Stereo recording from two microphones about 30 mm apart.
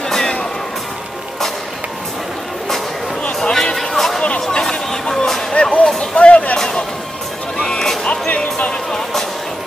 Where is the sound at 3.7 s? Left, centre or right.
Centre.